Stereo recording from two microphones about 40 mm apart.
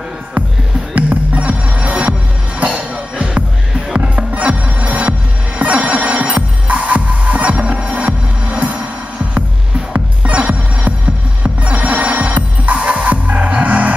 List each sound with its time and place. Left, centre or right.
0.9 s music: right
4.8 s music: right
10.2 s music: right